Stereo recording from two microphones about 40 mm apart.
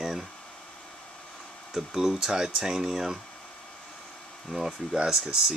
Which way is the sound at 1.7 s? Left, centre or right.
Centre.